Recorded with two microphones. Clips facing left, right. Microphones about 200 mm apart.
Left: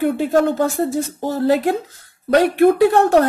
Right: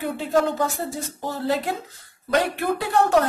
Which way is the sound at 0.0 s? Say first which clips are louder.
Left 6 dB; 55° left (ahead or behind).